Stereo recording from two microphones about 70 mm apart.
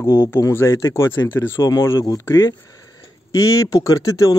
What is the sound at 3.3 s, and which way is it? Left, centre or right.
Speech, left.